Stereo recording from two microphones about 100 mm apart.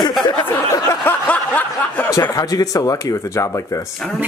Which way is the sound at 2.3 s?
35° left (ahead or behind).